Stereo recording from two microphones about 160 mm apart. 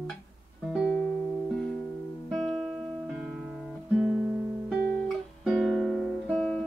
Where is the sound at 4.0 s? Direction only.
5° right (ahead or behind).